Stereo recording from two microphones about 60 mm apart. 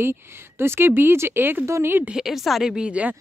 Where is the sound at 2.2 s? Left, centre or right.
Centre.